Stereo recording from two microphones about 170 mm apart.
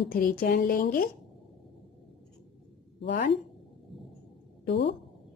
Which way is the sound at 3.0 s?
90° left.